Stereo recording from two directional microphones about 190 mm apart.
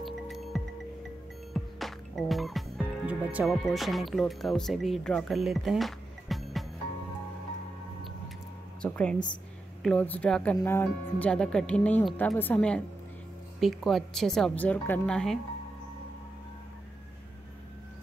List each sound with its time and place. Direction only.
0.0 s music: centre (ahead or behind)
8.8 s a woman's voice: 5° left (ahead or behind)